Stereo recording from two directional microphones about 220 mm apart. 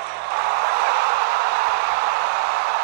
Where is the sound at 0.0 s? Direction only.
45° right (ahead or behind).